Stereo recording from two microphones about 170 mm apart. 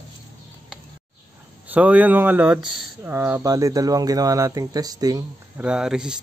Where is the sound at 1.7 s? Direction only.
10° right (ahead or behind).